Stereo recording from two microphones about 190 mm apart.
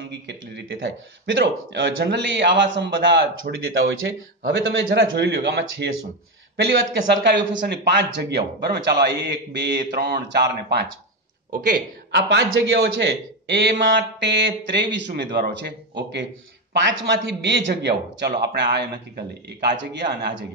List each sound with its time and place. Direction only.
0.0 s a man's voice: 70° right (ahead or behind)
4.5 s a man's voice: 70° right (ahead or behind)
11.5 s speech: 45° right (ahead or behind)
12.3 s a man's voice: 75° right (ahead or behind)
16.7 s a man's voice: 70° right (ahead or behind)